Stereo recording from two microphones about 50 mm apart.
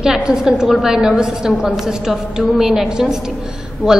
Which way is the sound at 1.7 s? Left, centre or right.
Centre.